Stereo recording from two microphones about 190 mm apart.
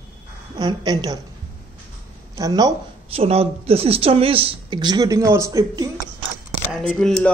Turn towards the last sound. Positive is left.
turn(degrees=5)  # may be behind; listen again after turning